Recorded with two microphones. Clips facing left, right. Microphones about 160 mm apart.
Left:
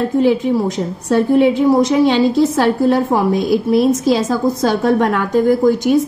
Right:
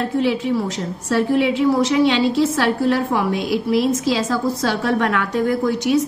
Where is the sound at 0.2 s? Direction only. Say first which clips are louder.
Left 6 dB; 45° left (ahead or behind).